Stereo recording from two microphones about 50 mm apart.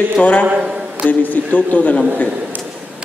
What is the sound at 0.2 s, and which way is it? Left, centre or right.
A man's voice, left.